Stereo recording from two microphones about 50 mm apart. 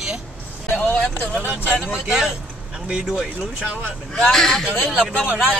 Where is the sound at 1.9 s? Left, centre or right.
Centre.